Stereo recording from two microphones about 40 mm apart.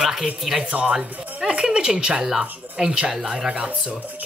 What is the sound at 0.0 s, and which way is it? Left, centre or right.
Speech, centre.